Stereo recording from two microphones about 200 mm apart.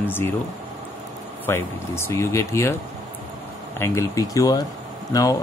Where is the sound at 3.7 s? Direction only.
15° left (ahead or behind).